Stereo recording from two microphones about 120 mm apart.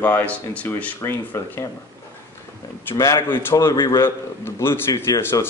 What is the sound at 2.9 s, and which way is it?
A man's voice, 25° left (ahead or behind).